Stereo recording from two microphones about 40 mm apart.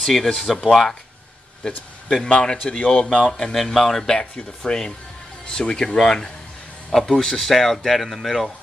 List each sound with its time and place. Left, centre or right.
0.0 s speech: centre
2.0 s a man's voice: left
4.7 s a man's voice: left
5.9 s a man's voice: centre